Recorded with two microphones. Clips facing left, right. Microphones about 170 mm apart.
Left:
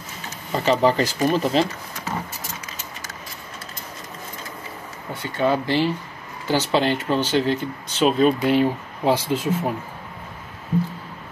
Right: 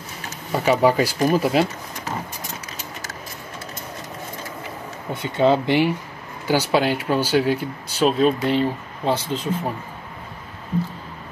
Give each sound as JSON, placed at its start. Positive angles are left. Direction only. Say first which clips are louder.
{"t": 0.5, "sound": "speech", "louder": "right 1 dB", "side_deg": -10}
{"t": 5.1, "sound": "speech", "louder": "right 4 dB", "side_deg": -20}
{"t": 8.1, "sound": "speech", "louder": "left 2 dB", "side_deg": 0}